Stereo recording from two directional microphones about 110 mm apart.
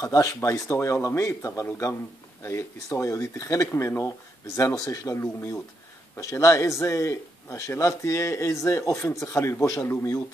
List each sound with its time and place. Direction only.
0.0 s speech: 30° left (ahead or behind)